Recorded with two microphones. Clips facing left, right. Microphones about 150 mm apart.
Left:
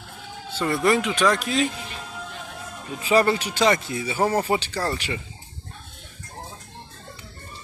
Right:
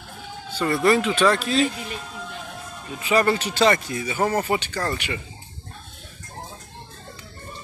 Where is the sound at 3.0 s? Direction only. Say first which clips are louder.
Left 1 dB; 35° left (ahead or behind).